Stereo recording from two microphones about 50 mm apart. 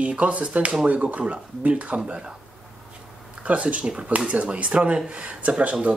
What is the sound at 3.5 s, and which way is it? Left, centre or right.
Speech, right.